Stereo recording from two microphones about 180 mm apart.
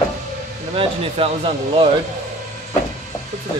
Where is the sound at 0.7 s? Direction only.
30° right (ahead or behind).